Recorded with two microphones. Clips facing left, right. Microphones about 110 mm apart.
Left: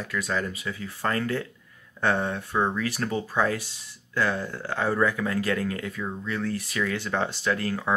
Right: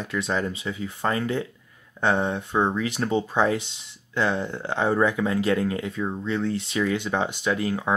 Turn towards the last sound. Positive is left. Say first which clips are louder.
# right 2 dB
turn(degrees=-15)  # may be behind; listen again after turning